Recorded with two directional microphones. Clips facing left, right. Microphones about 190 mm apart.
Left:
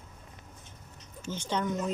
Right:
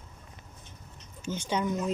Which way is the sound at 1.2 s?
10° right (ahead or behind).